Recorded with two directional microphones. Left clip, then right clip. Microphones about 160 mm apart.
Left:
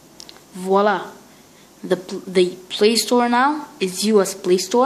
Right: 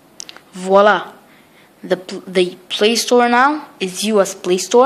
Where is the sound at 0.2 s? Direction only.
15° right (ahead or behind).